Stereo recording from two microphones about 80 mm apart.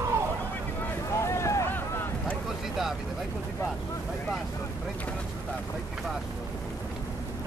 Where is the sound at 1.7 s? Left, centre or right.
Left.